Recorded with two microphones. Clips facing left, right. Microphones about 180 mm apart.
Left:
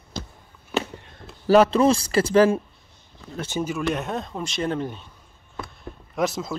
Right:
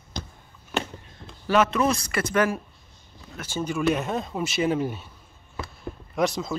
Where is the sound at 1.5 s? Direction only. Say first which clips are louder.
Left 5 dB; 35° left (ahead or behind).